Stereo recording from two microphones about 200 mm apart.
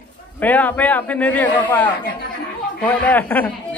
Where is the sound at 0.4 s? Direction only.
10° left (ahead or behind).